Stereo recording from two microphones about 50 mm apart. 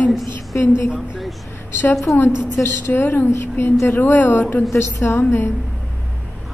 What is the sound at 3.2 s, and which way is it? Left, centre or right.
Speech, left.